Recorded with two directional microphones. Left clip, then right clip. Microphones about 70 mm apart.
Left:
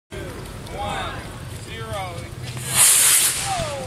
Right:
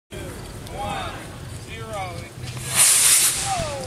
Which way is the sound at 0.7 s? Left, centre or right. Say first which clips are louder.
Left 1 dB; centre.